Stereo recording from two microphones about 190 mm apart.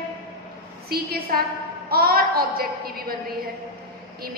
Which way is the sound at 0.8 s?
55° right (ahead or behind).